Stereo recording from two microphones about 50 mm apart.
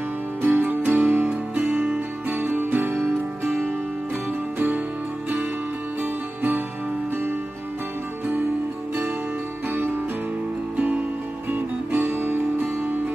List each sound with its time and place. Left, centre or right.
0.4 s music: right
4.6 s music: right
9.7 s music: right
11.5 s music: right